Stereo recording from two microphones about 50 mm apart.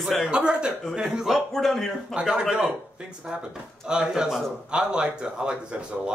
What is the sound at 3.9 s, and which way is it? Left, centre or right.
Speech, centre.